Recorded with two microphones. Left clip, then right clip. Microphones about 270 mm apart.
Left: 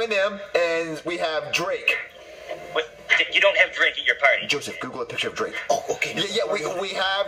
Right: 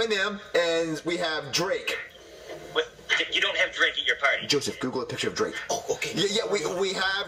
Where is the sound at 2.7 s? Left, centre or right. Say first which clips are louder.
Left 4 dB; left.